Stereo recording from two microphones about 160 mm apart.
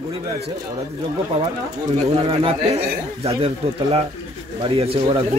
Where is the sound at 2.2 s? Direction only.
35° right (ahead or behind).